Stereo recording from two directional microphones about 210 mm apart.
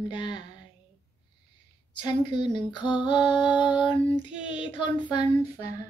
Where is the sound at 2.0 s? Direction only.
20° left (ahead or behind).